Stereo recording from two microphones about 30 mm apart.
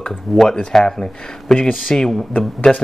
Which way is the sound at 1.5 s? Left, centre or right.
Centre.